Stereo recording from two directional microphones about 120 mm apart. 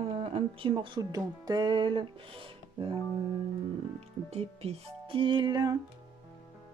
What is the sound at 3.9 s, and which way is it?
Speech, 55° right (ahead or behind).